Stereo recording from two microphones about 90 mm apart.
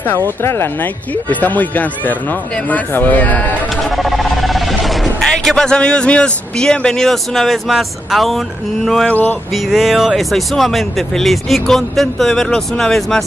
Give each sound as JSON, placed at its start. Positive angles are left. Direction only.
{"t": 0.4, "sound": "speech", "side_deg": 30}
{"t": 3.9, "sound": "speech", "side_deg": 0}
{"t": 9.1, "sound": "speech", "side_deg": 20}
{"t": 9.7, "sound": "speech", "side_deg": 0}